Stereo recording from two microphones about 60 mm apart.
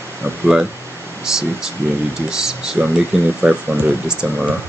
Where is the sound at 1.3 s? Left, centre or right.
Centre.